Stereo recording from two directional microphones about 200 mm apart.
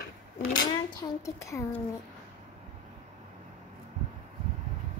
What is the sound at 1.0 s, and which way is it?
Speech, 15° left (ahead or behind).